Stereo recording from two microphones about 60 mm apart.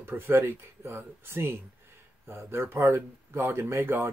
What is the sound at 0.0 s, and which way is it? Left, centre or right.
Speech, right.